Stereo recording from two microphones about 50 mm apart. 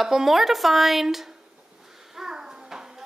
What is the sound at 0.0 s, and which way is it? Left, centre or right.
A child's voice, centre.